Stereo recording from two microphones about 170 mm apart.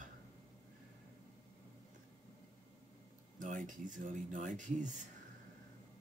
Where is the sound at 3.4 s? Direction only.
50° right (ahead or behind).